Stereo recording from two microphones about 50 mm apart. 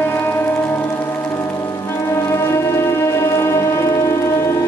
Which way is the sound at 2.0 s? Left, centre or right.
Left.